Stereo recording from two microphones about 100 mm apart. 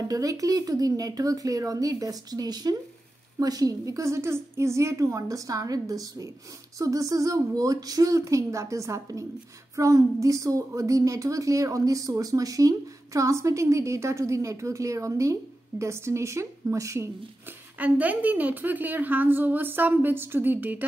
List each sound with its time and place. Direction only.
0.0 s a woman's voice: 35° right (ahead or behind)
17.7 s a woman's voice: 15° right (ahead or behind)